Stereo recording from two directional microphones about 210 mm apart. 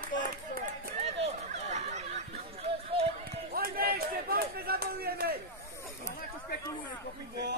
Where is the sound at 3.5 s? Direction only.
45° right (ahead or behind).